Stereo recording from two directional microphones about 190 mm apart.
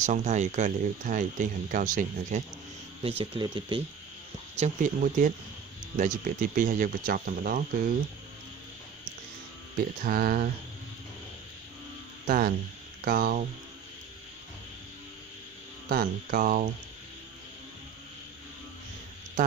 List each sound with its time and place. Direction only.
0.0 s speech: 40° right (ahead or behind)
3.0 s speech: 30° right (ahead or behind)
4.6 s speech: 45° right (ahead or behind)
10.0 s speech: 50° right (ahead or behind)
12.3 s speech: 45° right (ahead or behind)
15.9 s speech: 50° right (ahead or behind)
19.4 s a sound: 40° right (ahead or behind)